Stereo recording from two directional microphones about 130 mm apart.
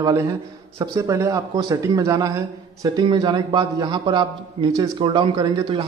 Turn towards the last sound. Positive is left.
turn(degrees=-35)  # may be behind; listen again after turning